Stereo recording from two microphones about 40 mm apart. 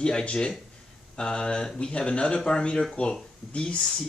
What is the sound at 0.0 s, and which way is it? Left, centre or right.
Speech, left.